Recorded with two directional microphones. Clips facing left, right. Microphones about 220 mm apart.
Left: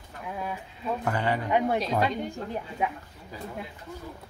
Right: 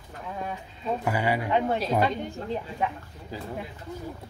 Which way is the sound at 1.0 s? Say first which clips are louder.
Right 1 dB; 10° right (ahead or behind).